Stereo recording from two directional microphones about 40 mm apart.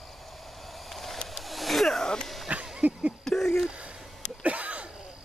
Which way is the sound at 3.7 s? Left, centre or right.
Right.